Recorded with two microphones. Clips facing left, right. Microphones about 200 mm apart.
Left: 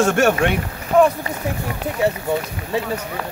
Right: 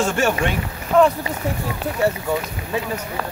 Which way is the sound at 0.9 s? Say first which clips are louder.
Left 1 dB; 10° left (ahead or behind).